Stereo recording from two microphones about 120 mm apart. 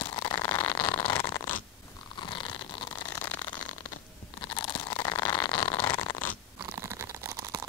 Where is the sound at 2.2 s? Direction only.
40° left (ahead or behind).